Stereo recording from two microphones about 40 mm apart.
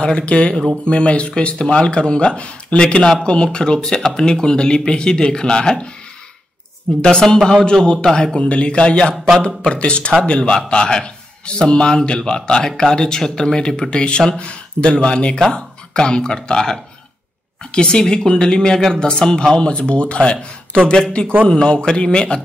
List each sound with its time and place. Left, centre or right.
0.0 s a man's voice: left
7.0 s a man's voice: centre
8.4 s a man's voice: left